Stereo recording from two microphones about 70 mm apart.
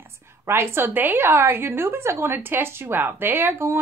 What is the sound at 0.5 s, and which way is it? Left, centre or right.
A woman's voice, right.